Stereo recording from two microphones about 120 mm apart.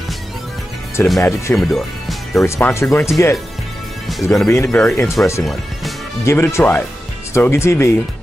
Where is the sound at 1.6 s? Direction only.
Centre (ahead or behind).